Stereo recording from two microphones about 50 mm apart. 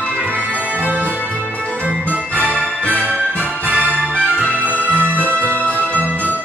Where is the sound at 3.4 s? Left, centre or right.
Right.